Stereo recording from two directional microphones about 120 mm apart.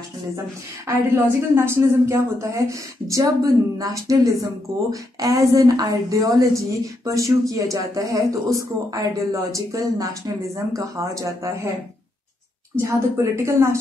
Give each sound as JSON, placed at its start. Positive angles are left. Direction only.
{"t": 0.8, "sound": "speech", "side_deg": -20}
{"t": 12.7, "sound": "speech", "side_deg": -25}